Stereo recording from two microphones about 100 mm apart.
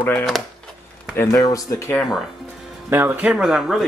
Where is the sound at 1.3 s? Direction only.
35° left (ahead or behind).